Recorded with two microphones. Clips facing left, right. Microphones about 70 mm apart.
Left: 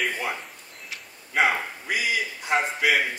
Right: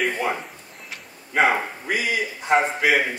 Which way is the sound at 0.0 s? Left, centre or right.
Centre.